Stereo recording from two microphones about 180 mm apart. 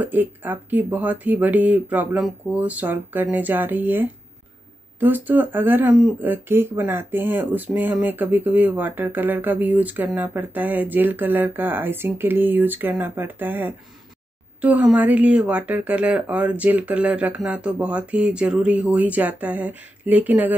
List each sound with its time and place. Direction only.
0.0 s speech: 10° right (ahead or behind)